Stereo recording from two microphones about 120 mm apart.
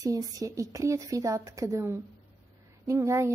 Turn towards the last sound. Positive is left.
turn(degrees=-25)  # may be behind; listen again after turning